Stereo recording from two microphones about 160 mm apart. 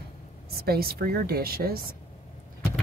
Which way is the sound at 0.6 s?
75° right (ahead or behind).